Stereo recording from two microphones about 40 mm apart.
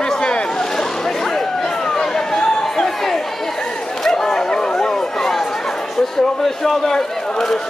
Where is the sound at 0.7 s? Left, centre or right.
Centre.